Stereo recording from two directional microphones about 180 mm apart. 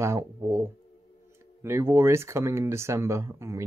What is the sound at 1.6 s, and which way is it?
Speech, 15° right (ahead or behind).